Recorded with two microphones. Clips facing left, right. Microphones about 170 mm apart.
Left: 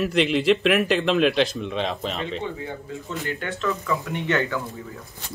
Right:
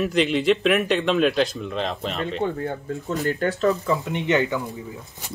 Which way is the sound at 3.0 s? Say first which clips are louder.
Right 7 dB; 40° right (ahead or behind).